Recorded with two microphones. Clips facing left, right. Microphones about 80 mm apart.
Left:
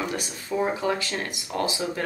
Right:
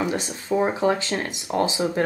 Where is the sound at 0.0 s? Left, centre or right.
Right.